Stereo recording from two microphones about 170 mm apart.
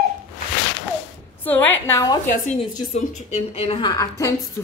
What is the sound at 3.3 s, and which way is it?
A woman's voice, 35° left (ahead or behind).